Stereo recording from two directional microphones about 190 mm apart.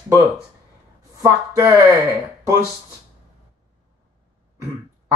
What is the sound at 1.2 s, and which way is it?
Speech, 15° right (ahead or behind).